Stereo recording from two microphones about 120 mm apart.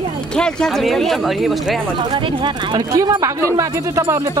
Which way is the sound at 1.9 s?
40° right (ahead or behind).